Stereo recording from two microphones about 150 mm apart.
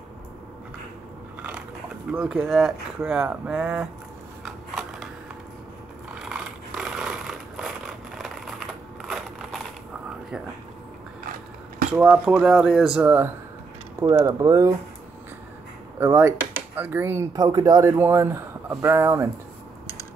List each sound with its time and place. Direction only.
2.0 s speech: 5° right (ahead or behind)
6.1 s a sound: 5° right (ahead or behind)
9.0 s crushing: centre (ahead or behind)
11.9 s speech: 10° right (ahead or behind)
14.0 s speech: 20° right (ahead or behind)
16.0 s speech: 15° right (ahead or behind)